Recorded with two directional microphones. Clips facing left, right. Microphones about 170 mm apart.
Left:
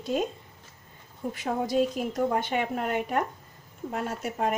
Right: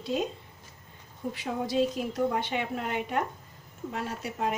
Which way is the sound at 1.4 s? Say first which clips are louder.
Left 2 dB; 45° left (ahead or behind).